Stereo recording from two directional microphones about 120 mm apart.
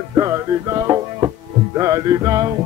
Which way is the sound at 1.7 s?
30° right (ahead or behind).